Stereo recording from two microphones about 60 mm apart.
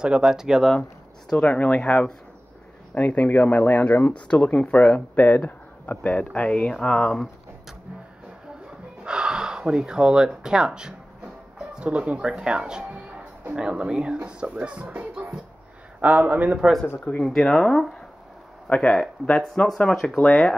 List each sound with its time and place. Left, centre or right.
0.0 s speech: centre
1.3 s speech: left
9.0 s speech: centre
17.2 s speech: centre